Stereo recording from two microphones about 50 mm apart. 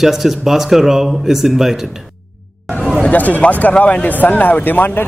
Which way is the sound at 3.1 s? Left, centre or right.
Left.